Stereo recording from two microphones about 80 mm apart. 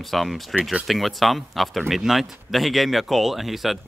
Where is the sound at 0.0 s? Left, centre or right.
Centre.